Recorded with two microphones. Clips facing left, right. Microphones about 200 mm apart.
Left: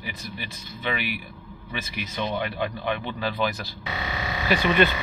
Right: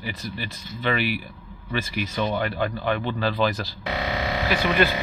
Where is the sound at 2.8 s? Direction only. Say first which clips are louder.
Right 3 dB; 15° left (ahead or behind).